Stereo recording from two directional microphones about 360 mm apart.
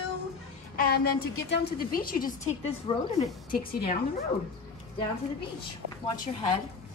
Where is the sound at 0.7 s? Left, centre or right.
Left.